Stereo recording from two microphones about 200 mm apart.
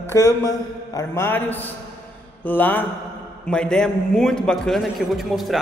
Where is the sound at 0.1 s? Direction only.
15° left (ahead or behind).